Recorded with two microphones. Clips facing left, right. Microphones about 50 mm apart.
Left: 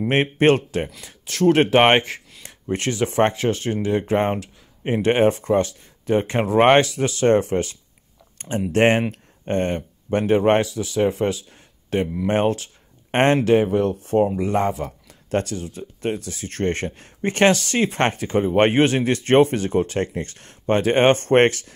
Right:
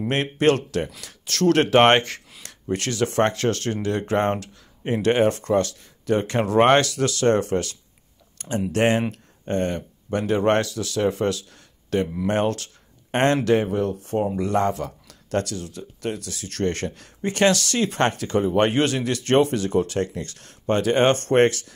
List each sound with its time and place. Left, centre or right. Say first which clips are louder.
0.1 s speech: left 3 dB; left
1.0 s speech: left 3 dB; centre
2.7 s speech: left 1 dB; left
4.8 s speech: left 2 dB; left
10.4 s speech: left 2 dB; centre
13.1 s speech: left 3 dB; left
13.4 s speech: left 3 dB; centre; by 17.6 s left
17.6 s speech: left 1 dB; left